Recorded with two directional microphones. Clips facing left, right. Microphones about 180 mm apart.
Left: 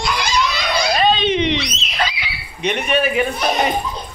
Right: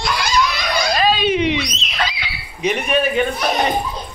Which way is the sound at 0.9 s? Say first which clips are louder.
Even; 5° right (ahead or behind).